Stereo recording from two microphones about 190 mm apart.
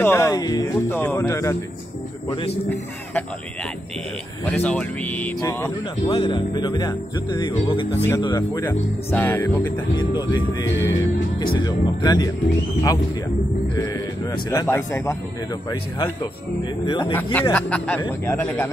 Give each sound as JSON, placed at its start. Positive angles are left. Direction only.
{"t": 0.0, "sound": "speech", "side_deg": 15}
{"t": 4.5, "sound": "speech", "side_deg": 5}
{"t": 7.9, "sound": "speech", "side_deg": 10}
{"t": 9.9, "sound": "speech", "side_deg": 25}
{"t": 14.3, "sound": "speech", "side_deg": 20}
{"t": 17.0, "sound": "speech", "side_deg": 10}